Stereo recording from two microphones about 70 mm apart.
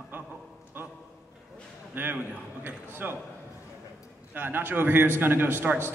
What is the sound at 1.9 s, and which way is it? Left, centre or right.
A man's voice, right.